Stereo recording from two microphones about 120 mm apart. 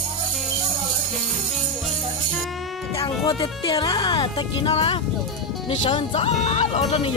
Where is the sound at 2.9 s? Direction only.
30° left (ahead or behind).